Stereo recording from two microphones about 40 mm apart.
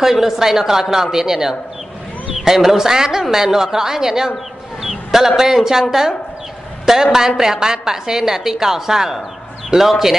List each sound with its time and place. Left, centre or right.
0.0 s a woman's voice: centre